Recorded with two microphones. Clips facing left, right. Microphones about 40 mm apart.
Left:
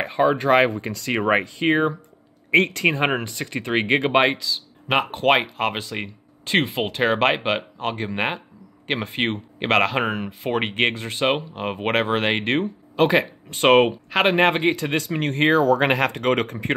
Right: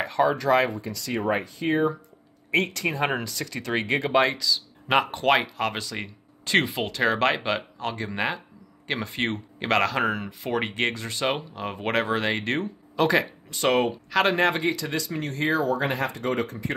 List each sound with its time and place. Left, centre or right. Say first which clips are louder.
0.0 s speech: left 3 dB; left
0.5 s speech: left 4 dB; left
3.3 s speech: left 3 dB; left
4.4 s speech: right 2 dB; centre; by 15.6 s left
15.6 s speech: left 7 dB; left